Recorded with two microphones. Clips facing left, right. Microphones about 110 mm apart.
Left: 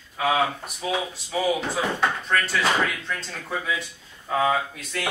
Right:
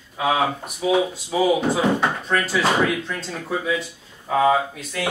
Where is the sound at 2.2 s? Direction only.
5° right (ahead or behind).